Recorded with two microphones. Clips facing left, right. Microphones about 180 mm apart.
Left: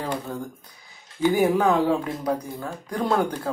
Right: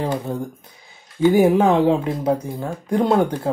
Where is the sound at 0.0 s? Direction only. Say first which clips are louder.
Right 6 dB; 20° right (ahead or behind).